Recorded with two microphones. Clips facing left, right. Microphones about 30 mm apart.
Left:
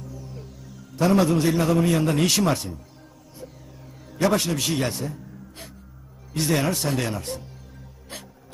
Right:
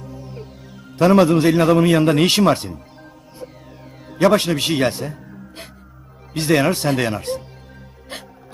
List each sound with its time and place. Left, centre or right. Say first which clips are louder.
0.0 s a man's voice: right 5 dB; right
4.1 s a man's voice: right 7 dB; right
8.1 s music: right 6 dB; right